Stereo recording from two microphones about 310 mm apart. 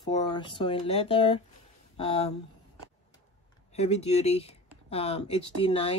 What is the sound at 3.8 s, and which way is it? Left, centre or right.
Speech, left.